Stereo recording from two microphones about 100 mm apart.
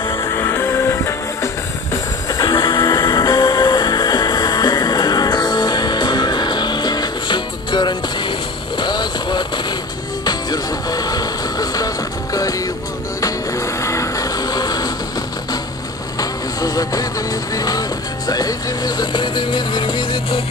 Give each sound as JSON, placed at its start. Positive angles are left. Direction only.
{"t": 0.2, "sound": "music", "side_deg": 25}
{"t": 2.5, "sound": "music", "side_deg": 50}
{"t": 2.8, "sound": "music", "side_deg": 40}
{"t": 16.2, "sound": "vehicle", "side_deg": 40}